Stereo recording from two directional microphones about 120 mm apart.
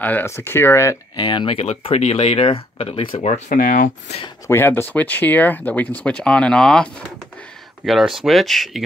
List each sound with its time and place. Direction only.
0.0 s speech: 15° left (ahead or behind)
1.1 s speech: 40° left (ahead or behind)
1.6 s speech: 60° left (ahead or behind)
3.2 s speech: 90° left
4.5 s speech: 20° left (ahead or behind); by 8.8 s centre (ahead or behind)